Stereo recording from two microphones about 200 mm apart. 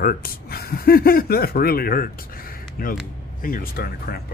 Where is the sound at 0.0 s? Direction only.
45° left (ahead or behind).